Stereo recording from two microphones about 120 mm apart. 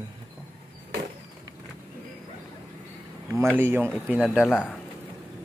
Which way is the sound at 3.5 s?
20° right (ahead or behind).